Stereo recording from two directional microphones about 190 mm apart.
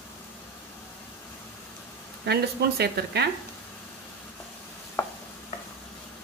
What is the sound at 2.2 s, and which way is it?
A woman's voice, 60° right (ahead or behind).